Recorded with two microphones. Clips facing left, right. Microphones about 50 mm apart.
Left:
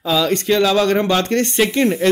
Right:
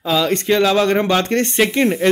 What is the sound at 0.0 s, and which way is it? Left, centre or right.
Speech, centre.